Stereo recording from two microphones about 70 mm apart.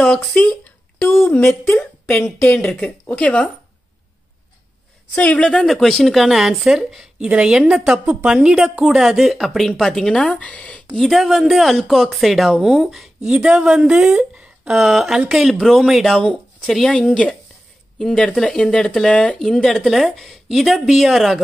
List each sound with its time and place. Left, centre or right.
0.0 s speech: centre
1.4 s speech: left
2.3 s speech: centre
5.1 s a woman's voice: centre
8.0 s speech: right
8.3 s a woman's voice: centre
11.0 s speech: centre